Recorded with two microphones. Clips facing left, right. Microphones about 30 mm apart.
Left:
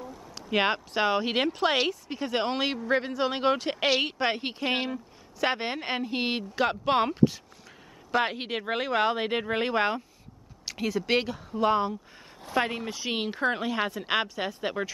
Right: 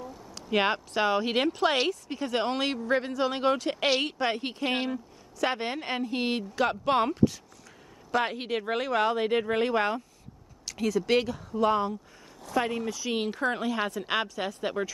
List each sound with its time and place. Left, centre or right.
0.0 s speech: centre
3.8 s speech: centre
4.2 s speech: left
4.6 s speech: centre
5.4 s speech: left